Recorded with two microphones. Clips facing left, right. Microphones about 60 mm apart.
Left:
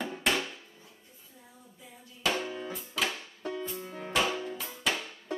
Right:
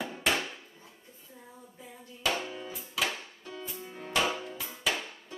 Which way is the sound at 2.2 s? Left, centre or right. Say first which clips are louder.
Left 1 dB; centre.